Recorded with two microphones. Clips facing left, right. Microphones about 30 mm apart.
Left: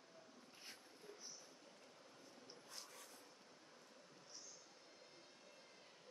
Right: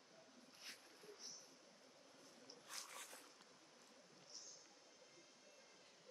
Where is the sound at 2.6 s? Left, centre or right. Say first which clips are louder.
Right 5 dB; right.